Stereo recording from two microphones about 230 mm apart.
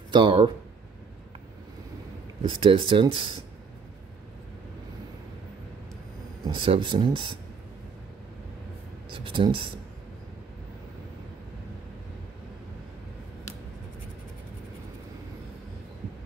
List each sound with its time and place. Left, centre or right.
0.1 s speech: right
2.4 s speech: right
6.4 s speech: right
9.1 s speech: right